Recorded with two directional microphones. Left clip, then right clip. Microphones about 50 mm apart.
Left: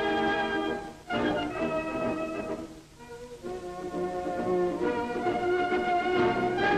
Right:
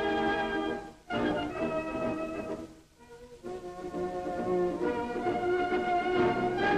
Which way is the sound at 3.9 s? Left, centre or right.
Left.